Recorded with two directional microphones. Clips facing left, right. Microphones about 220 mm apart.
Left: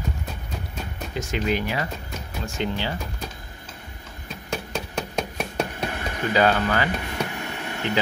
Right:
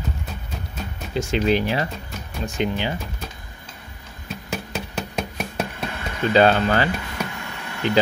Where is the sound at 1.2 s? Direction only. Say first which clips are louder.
Right 5 dB; 30° right (ahead or behind).